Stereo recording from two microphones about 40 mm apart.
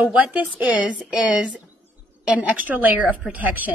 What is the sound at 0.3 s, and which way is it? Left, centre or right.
A woman's voice, right.